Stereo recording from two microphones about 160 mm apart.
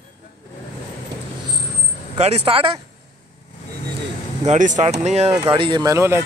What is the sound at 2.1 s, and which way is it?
Speech, 40° right (ahead or behind).